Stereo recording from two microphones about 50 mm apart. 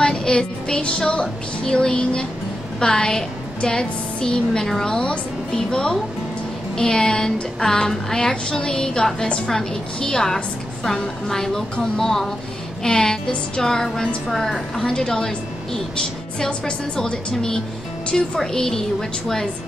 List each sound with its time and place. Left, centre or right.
0.0 s a woman's voice: centre